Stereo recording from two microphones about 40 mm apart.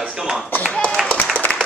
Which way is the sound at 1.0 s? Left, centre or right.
Centre.